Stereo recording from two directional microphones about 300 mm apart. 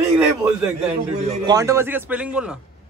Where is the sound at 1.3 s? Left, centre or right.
Centre.